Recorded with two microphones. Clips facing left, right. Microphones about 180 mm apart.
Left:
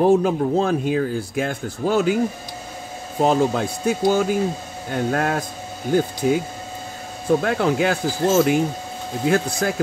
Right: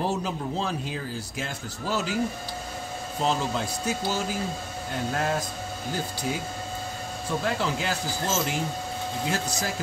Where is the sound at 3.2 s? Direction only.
55° left (ahead or behind).